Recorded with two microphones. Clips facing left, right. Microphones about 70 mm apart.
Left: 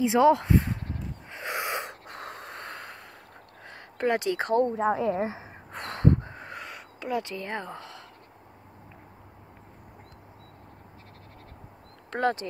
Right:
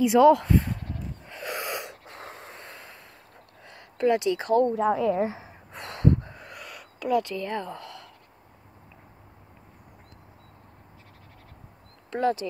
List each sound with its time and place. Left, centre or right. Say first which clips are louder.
0.0 s a sound: right 3 dB; left
1.9 s a sound: left 2 dB; left
3.6 s speech: right 4 dB; left
4.7 s speech: right 2 dB; left
5.5 s gasp: left 2 dB; left
12.1 s speech: right 1 dB; left